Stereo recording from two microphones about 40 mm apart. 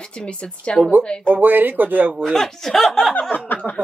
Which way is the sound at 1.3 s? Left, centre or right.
Right.